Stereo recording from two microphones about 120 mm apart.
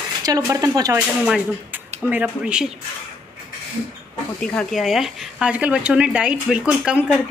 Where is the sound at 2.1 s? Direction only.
10° right (ahead or behind).